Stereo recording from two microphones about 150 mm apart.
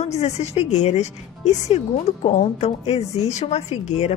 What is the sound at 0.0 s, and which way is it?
A woman's voice, 45° left (ahead or behind).